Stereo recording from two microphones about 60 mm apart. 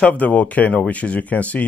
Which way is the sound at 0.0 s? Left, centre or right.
Left.